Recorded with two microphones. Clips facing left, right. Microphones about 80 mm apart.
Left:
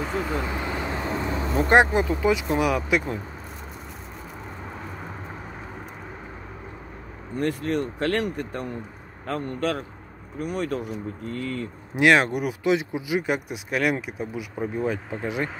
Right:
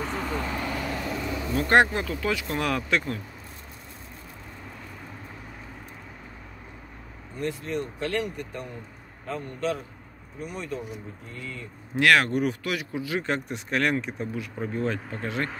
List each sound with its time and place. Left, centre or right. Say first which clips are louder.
0.0 s vehicle: left 3 dB; centre
0.4 s vehicle: left 2 dB; centre
1.7 s speech: left 2 dB; centre
7.3 s a man's voice: left 5 dB; left
11.9 s speech: left 2 dB; centre